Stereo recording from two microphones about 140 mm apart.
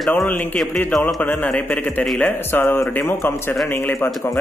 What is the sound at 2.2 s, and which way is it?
Speech, 15° left (ahead or behind).